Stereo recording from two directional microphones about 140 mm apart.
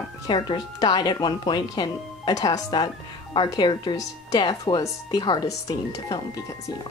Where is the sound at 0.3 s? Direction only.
35° left (ahead or behind).